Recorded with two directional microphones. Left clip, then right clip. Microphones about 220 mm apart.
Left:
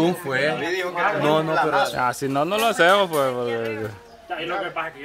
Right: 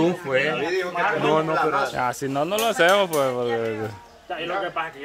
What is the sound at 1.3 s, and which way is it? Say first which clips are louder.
Speech: even; 45° left (ahead or behind).